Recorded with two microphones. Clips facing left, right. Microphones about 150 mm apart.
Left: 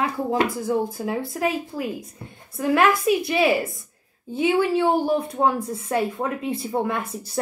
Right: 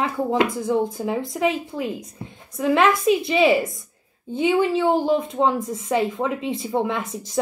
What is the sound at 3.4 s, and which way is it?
A woman's voice, centre (ahead or behind).